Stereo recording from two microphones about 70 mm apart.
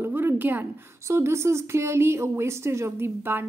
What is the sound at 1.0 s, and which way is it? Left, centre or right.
A woman's voice, right.